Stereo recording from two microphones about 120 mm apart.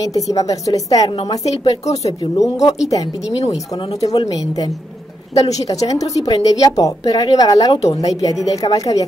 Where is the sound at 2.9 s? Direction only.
30° left (ahead or behind).